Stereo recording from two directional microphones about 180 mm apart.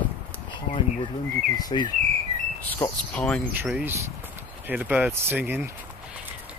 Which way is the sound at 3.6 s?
10° right (ahead or behind).